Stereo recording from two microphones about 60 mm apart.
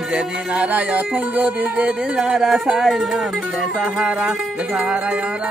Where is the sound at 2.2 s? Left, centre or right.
Centre.